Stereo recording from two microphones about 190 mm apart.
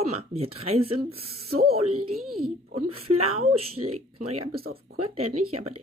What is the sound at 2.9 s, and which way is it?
Speech, 30° right (ahead or behind).